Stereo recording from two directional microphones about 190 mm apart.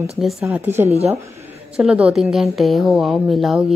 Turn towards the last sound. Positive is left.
turn(degrees=0)  # may be behind; listen again after turning